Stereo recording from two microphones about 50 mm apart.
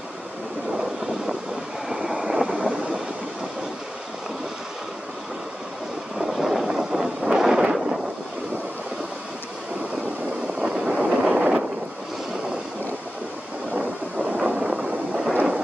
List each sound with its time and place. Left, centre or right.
1.9 s vehicle: centre
6.1 s vehicle: centre
7.7 s wind noise: centre
10.4 s vehicle: centre
13.7 s a sound: right